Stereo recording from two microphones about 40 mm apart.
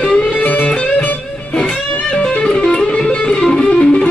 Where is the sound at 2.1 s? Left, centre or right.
Left.